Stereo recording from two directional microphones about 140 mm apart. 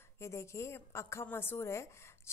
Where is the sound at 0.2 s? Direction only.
20° left (ahead or behind).